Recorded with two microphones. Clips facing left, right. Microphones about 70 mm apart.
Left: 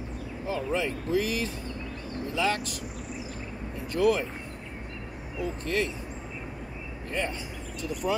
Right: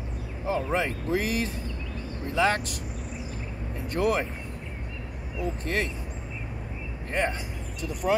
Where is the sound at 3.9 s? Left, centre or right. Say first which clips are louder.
Left 1 dB; right.